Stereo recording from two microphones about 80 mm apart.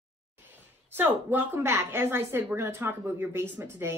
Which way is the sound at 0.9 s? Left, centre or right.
Right.